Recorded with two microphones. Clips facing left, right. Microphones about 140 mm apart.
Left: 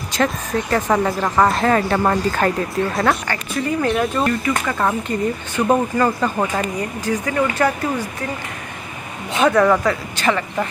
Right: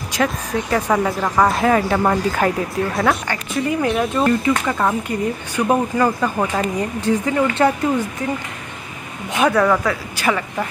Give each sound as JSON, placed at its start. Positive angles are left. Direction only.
{"t": 0.1, "sound": "speech", "side_deg": -5}
{"t": 7.0, "sound": "speech", "side_deg": -25}
{"t": 9.3, "sound": "speech", "side_deg": -10}